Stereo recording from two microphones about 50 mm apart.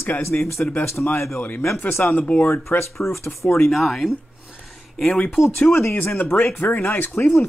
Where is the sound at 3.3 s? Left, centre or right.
Left.